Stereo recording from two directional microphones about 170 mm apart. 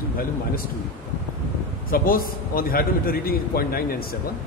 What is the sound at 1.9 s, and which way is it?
A man's voice, 60° left (ahead or behind).